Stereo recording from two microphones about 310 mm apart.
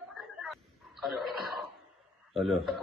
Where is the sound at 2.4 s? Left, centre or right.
Centre.